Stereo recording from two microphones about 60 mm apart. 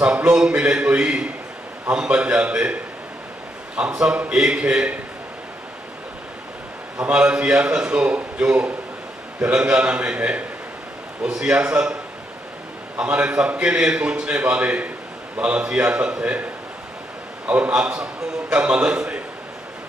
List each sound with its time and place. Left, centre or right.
0.0 s a man's voice: centre
4.0 s a man's voice: centre
7.0 s a man's voice: centre
12.9 s a man's voice: right
17.5 s a man's voice: right